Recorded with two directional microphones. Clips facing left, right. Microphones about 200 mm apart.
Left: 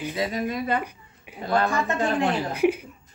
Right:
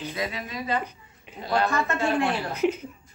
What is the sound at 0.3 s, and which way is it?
Speech, 50° left (ahead or behind).